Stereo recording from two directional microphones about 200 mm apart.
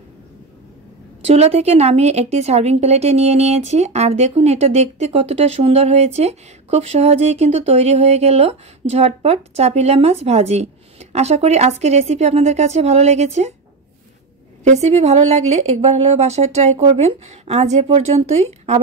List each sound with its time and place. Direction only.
1.2 s a woman's voice: 30° right (ahead or behind)
14.6 s a woman's voice: 30° right (ahead or behind)